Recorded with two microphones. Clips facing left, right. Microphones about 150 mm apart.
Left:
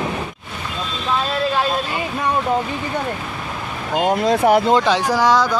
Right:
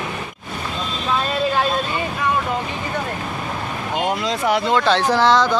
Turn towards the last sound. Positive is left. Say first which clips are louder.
# even
turn(degrees=10)  # may be behind; listen again after turning